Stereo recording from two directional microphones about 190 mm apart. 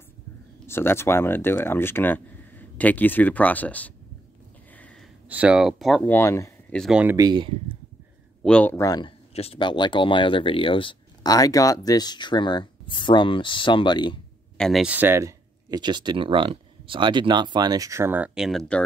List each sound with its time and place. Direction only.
0.7 s speech: 15° left (ahead or behind)
5.3 s speech: 5° right (ahead or behind); by 6.8 s 15° left (ahead or behind)
6.8 s speech: 5° right (ahead or behind)
7.2 s speech: 25° right (ahead or behind)
8.5 s speech: 10° left (ahead or behind)
9.3 s speech: 30° left (ahead or behind)
14.6 s speech: centre (ahead or behind)